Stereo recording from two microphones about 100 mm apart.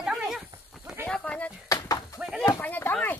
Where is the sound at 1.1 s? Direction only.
10° left (ahead or behind).